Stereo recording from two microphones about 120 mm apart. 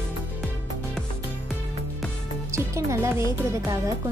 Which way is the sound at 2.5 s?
25° right (ahead or behind).